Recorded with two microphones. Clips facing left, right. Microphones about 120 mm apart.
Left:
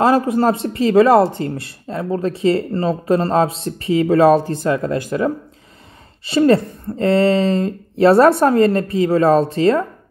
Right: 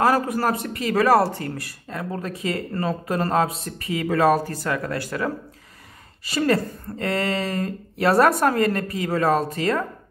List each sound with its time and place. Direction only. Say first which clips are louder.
0.0 s speech: left 6 dB; 25° left (ahead or behind)